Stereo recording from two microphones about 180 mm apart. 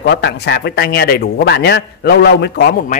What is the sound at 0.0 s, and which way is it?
Speech, 70° left (ahead or behind).